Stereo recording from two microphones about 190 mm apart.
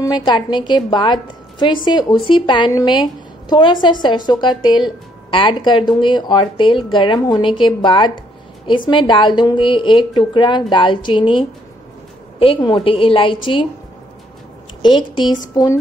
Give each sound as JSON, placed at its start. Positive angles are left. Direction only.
{"t": 0.0, "sound": "a woman's voice", "side_deg": 20}
{"t": 14.8, "sound": "a woman's voice", "side_deg": 25}